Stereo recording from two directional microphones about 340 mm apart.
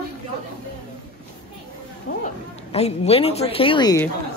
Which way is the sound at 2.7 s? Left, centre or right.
Centre.